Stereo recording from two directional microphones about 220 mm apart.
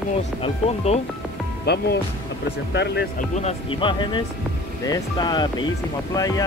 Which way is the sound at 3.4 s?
25° left (ahead or behind).